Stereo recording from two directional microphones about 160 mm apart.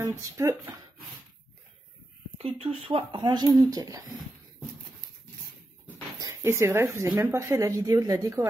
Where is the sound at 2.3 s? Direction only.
40° right (ahead or behind); by 4.0 s 20° right (ahead or behind).